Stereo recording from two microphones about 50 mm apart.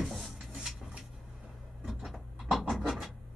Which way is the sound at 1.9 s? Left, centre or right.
Centre.